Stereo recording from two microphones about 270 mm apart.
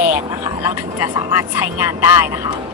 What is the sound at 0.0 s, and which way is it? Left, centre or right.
Speech, centre.